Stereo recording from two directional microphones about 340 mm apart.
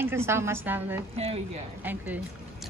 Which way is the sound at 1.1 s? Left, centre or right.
Centre.